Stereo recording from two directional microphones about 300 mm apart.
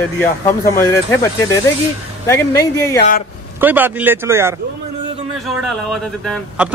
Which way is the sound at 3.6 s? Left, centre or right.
Centre.